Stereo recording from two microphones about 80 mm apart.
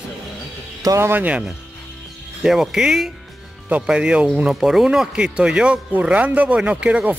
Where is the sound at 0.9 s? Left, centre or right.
Right.